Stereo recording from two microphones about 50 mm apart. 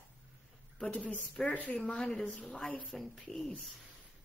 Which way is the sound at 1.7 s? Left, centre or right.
Centre.